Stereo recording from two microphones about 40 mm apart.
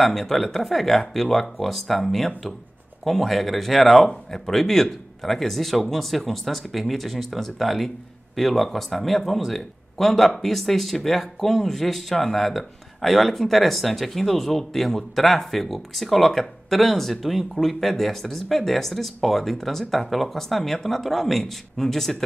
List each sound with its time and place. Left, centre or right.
0.0 s speech: centre